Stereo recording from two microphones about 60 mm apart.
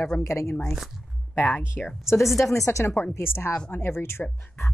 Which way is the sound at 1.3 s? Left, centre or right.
Left.